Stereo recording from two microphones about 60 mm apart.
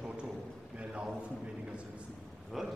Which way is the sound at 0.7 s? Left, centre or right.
Centre.